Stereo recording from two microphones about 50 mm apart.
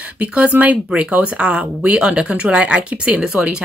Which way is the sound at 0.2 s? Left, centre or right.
Right.